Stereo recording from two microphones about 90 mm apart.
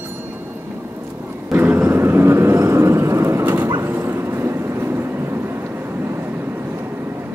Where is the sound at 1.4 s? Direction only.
25° right (ahead or behind).